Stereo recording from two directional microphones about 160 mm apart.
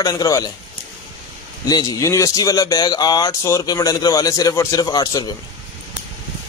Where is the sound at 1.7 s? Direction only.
20° left (ahead or behind).